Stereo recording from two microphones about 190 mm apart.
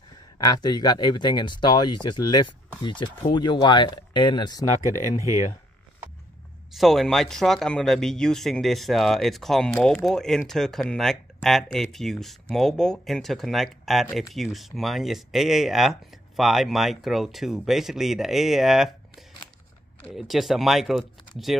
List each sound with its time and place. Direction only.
0.4 s speech: 20° left (ahead or behind)
6.7 s speech: centre (ahead or behind)